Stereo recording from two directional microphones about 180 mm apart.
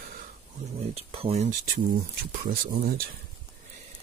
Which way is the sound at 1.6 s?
55° right (ahead or behind).